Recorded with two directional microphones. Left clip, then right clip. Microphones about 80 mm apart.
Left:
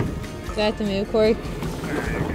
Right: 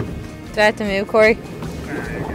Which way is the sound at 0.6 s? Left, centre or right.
Right.